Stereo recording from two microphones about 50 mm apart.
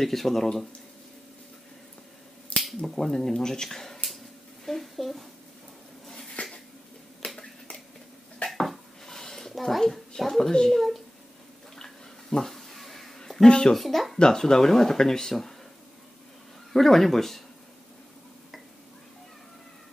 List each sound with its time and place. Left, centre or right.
0.0 s speech: centre
2.5 s finger snapping: left
2.9 s speech: centre
6.0 s a sound: centre
7.2 s finger snapping: centre
8.5 s a sound: centre
10.5 s speech: centre
11.7 s a sound: centre
13.7 s speech: centre
14.1 s speech: centre
16.7 s speech: centre